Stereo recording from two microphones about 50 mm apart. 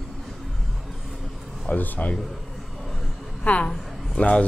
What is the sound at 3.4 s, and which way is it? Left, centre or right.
A woman's voice, left.